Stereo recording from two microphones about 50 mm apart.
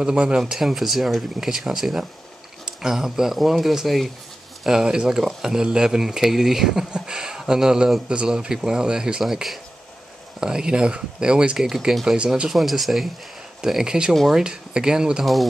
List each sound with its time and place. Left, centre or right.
0.0 s speech: centre
0.5 s speech: centre
4.6 s speech: centre
6.9 s a sound: centre
8.1 s speech: centre
9.2 s speech: centre
10.4 s speech: centre
11.5 s speech: centre